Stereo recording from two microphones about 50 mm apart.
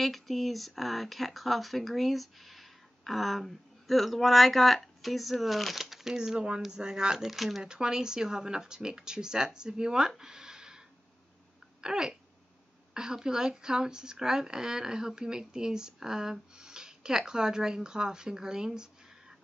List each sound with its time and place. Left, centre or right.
0.0 s speech: centre
7.6 s speech: centre
11.8 s speech: centre